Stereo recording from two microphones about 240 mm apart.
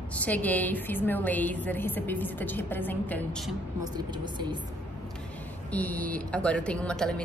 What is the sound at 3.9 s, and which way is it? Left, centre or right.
Speech, centre.